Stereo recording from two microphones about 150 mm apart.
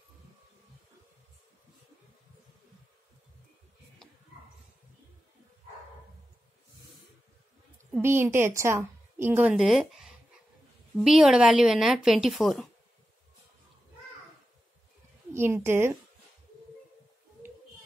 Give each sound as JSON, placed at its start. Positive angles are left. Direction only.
{"t": 8.0, "sound": "a woman's voice", "side_deg": -15}
{"t": 15.3, "sound": "a woman's voice", "side_deg": -15}